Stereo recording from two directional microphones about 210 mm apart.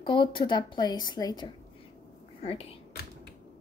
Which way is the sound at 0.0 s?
25° left (ahead or behind).